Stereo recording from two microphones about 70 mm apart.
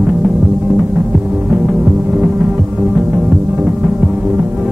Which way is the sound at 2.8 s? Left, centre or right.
Centre.